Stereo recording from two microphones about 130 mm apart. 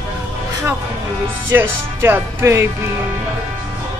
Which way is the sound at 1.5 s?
15° right (ahead or behind).